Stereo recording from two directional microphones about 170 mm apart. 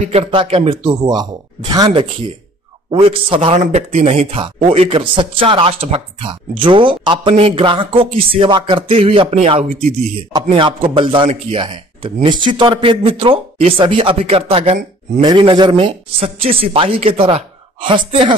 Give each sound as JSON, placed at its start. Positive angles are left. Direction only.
{"t": 0.0, "sound": "speech", "side_deg": -35}